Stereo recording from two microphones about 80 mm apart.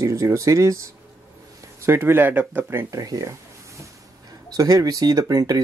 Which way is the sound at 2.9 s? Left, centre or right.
Right.